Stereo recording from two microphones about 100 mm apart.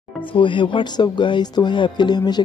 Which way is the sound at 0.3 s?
55° left (ahead or behind).